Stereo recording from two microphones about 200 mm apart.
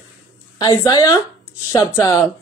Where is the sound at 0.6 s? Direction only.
20° left (ahead or behind).